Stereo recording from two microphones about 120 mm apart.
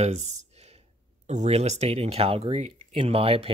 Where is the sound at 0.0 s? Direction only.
65° right (ahead or behind).